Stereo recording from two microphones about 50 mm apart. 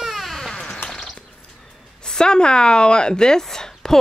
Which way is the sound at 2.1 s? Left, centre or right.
Centre.